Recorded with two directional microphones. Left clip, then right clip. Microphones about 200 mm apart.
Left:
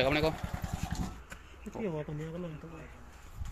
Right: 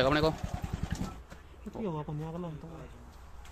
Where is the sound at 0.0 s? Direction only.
15° right (ahead or behind).